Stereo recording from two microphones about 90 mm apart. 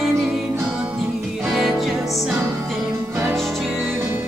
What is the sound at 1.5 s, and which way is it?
Music, centre (ahead or behind).